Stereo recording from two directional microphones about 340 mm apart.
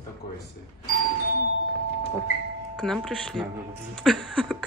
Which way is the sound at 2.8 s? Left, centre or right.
Centre.